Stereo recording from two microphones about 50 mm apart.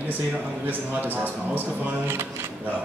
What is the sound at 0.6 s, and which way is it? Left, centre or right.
Speech, right.